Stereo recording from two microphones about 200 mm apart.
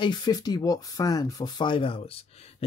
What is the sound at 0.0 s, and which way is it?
Speech, 20° left (ahead or behind).